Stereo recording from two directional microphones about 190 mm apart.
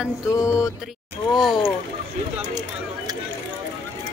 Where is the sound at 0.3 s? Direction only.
15° left (ahead or behind).